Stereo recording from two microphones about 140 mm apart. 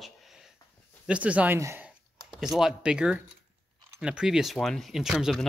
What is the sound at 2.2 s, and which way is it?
Speech, centre (ahead or behind).